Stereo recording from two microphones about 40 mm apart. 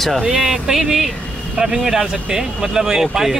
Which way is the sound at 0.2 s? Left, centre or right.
Centre.